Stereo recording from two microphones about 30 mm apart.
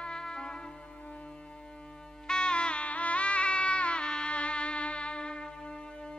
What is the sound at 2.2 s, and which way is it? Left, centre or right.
Music, left.